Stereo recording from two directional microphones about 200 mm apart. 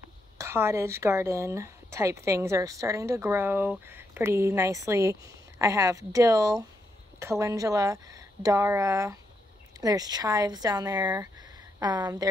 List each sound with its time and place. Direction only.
0.4 s a woman's voice: 15° right (ahead or behind)